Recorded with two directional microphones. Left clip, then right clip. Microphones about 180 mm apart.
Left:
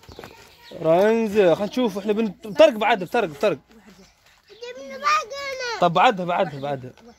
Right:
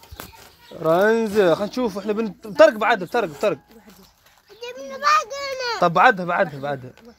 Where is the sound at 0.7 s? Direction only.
20° left (ahead or behind).